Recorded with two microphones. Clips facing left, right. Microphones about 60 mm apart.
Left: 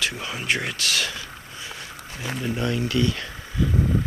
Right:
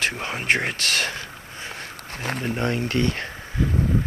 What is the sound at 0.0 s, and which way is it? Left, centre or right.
Speech, right.